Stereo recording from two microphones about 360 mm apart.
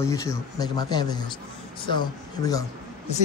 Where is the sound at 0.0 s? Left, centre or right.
Centre.